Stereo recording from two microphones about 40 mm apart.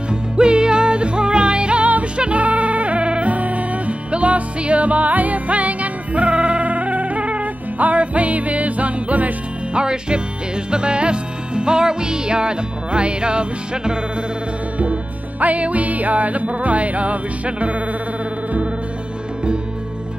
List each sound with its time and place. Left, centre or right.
0.1 s music: right
9.8 s music: right
15.4 s music: right